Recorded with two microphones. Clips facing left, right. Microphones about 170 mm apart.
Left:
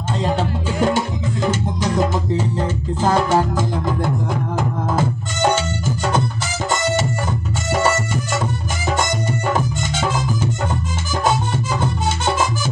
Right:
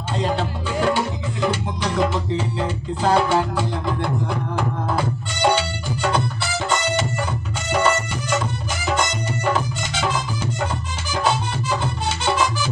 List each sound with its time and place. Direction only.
0.4 s music: 40° left (ahead or behind)
7.7 s music: 45° left (ahead or behind)
9.5 s music: 45° left (ahead or behind)